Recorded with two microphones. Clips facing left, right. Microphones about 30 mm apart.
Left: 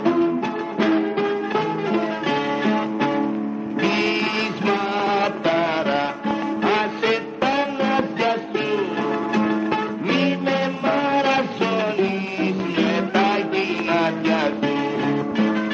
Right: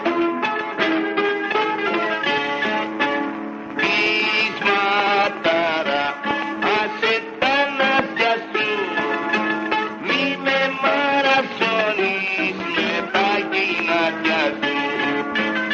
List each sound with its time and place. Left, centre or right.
0.0 s music: right
2.3 s music: centre
5.2 s music: centre
7.4 s music: right
10.4 s music: right